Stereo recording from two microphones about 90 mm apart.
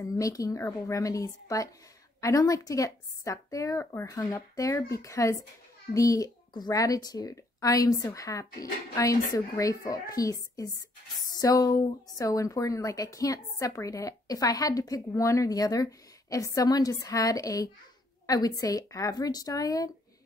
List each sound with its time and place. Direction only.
0.0 s speech: 40° left (ahead or behind)
3.8 s speech: 25° left (ahead or behind)
4.1 s speech: 40° left (ahead or behind)